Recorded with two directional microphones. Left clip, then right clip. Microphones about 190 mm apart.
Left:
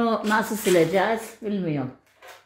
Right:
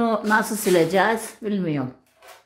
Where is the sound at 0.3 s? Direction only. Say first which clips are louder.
Right 3 dB; centre (ahead or behind); by 1.9 s 15° right (ahead or behind).